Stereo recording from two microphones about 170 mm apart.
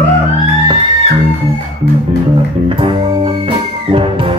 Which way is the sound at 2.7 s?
30° right (ahead or behind).